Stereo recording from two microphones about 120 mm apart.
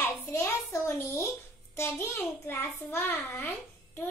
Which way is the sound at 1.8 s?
20° left (ahead or behind).